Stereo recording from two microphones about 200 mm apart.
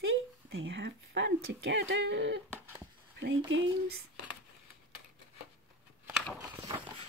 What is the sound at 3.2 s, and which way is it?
Speech, 65° right (ahead or behind).